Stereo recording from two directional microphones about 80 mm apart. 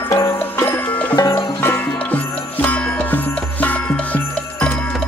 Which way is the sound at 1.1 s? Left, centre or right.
Left.